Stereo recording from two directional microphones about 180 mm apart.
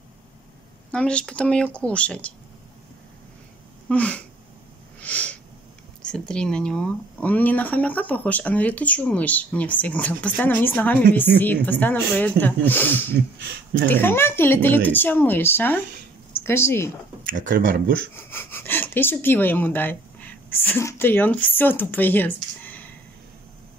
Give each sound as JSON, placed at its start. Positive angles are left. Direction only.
{"t": 0.9, "sound": "speech", "side_deg": 5}
{"t": 3.9, "sound": "speech", "side_deg": 5}
{"t": 5.0, "sound": "a sound", "side_deg": 10}
{"t": 6.0, "sound": "speech", "side_deg": 5}
{"t": 17.2, "sound": "speech", "side_deg": -50}
{"t": 18.1, "sound": "speech", "side_deg": 10}